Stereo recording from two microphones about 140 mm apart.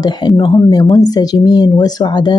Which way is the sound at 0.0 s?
30° left (ahead or behind).